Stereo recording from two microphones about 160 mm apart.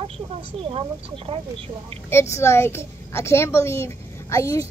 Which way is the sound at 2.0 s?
15° left (ahead or behind).